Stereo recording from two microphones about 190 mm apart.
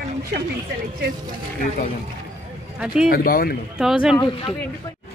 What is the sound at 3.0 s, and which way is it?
Speech, 50° left (ahead or behind).